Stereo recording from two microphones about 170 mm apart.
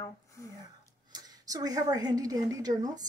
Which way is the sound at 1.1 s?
20° right (ahead or behind).